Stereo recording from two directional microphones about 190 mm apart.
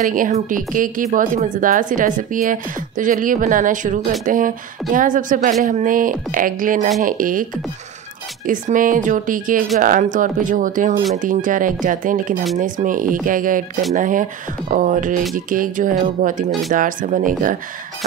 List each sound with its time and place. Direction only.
0.1 s speech: 45° right (ahead or behind)
8.5 s speech: 45° right (ahead or behind)